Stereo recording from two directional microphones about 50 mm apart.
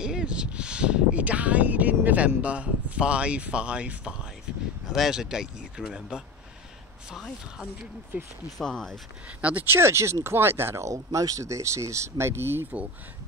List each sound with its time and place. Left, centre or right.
0.0 s speech: centre
4.9 s speech: centre
8.5 s speech: centre
9.4 s speech: right
9.7 s speech: right